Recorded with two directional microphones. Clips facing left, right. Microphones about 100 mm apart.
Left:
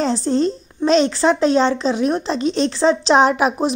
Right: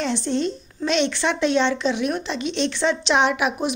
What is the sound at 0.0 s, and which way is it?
A woman's voice, 35° left (ahead or behind).